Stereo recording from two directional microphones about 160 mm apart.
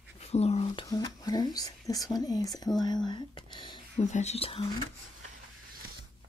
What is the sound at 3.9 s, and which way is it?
Speech, 45° left (ahead or behind).